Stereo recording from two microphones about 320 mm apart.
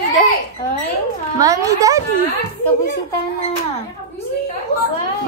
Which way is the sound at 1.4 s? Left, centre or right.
Centre.